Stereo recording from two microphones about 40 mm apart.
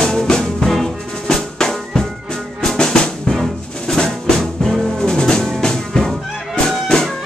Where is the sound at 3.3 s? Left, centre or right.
Centre.